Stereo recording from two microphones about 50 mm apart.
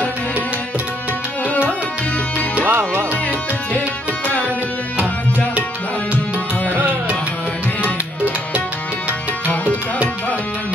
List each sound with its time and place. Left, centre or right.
2.6 s music: right